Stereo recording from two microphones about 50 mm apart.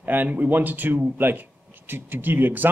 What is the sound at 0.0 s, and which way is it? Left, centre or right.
Speech, right.